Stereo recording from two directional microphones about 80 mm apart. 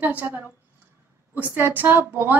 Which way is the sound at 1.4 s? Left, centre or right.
Right.